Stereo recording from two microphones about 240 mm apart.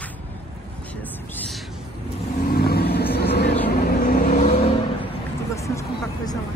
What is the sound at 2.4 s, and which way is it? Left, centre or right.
Vehicle, left.